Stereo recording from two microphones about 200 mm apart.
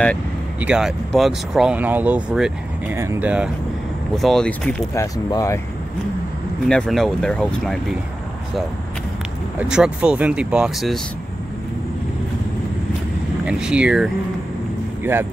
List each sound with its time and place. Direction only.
0.6 s speech: 5° right (ahead or behind)
5.0 s speech: 15° left (ahead or behind)
6.6 s speech: centre (ahead or behind)
9.6 s speech: 5° right (ahead or behind)
13.5 s speech: 5° right (ahead or behind)